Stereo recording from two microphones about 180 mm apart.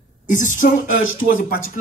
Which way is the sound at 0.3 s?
45° left (ahead or behind).